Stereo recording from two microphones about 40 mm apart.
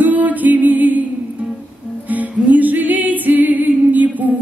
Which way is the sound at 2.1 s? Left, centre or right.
Right.